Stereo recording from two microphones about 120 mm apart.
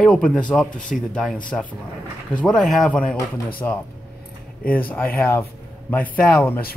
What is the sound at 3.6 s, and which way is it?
Speech, 20° left (ahead or behind).